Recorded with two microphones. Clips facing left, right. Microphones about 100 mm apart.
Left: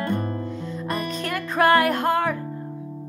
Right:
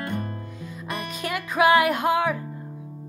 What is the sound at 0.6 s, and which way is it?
Music, 10° right (ahead or behind).